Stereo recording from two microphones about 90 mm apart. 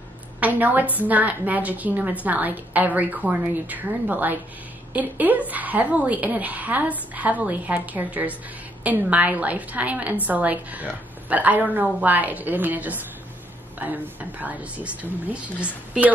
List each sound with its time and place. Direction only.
0.4 s a woman's voice: 20° right (ahead or behind)